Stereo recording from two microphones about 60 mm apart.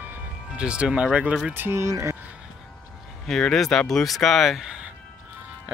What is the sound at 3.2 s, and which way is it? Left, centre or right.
Speech, centre.